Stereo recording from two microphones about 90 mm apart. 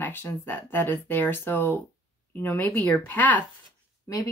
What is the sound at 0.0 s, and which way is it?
Speech, 20° left (ahead or behind).